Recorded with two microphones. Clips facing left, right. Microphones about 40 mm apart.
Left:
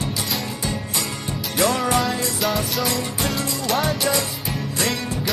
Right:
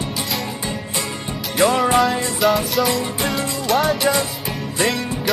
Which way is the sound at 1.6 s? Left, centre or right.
Centre.